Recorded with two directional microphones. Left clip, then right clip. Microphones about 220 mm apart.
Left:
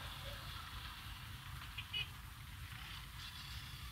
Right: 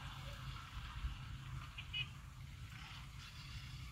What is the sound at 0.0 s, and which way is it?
Vehicle, 55° left (ahead or behind).